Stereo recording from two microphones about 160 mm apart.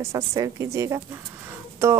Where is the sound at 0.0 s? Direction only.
20° right (ahead or behind).